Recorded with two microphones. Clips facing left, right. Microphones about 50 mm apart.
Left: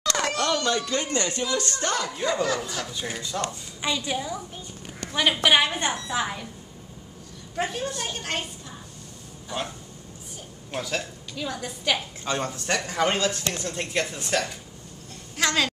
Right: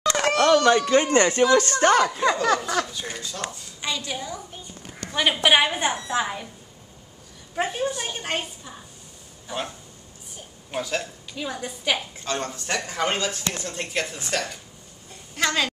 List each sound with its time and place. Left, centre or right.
0.1 s a sound: right
0.6 s speech: right
2.9 s a woman's voice: centre
5.1 s a woman's voice: centre
7.5 s a woman's voice: centre
12.3 s speech: centre